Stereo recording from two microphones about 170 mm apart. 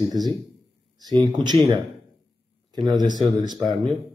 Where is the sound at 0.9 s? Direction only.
25° right (ahead or behind).